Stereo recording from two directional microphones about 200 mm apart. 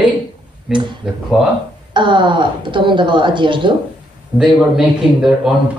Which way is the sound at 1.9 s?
25° right (ahead or behind).